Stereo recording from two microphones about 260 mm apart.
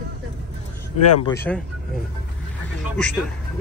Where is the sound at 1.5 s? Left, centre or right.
Centre.